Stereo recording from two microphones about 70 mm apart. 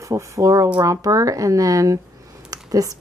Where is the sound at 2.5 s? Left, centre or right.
Right.